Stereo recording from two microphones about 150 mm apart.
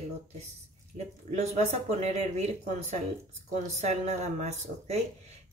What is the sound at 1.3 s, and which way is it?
Speech, 50° right (ahead or behind).